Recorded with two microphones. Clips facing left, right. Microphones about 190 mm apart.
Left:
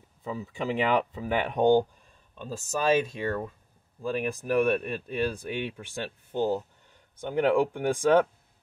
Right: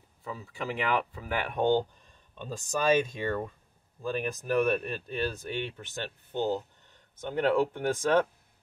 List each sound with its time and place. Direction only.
0.2 s speech: 20° left (ahead or behind)
2.3 s speech: centre (ahead or behind)